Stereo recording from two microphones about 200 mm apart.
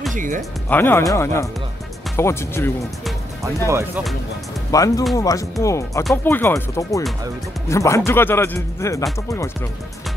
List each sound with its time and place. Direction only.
0.1 s speech: 40° right (ahead or behind)
0.4 s speech: 10° left (ahead or behind)
3.6 s speech: 15° right (ahead or behind)
4.6 s speech: 15° left (ahead or behind)